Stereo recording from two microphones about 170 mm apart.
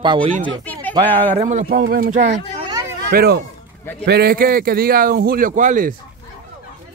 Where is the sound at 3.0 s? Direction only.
65° right (ahead or behind); by 5.9 s 50° right (ahead or behind).